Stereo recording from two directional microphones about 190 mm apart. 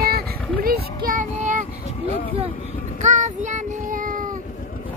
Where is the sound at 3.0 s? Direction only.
40° right (ahead or behind).